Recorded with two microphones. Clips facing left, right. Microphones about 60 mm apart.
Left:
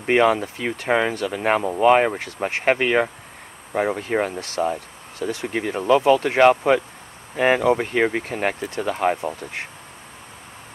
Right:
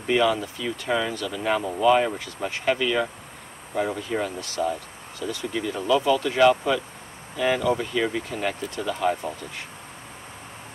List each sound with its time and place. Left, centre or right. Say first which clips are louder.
0.0 s speech: left 4 dB; left